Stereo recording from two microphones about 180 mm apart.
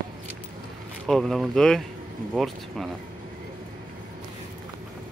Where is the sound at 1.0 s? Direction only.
Centre (ahead or behind).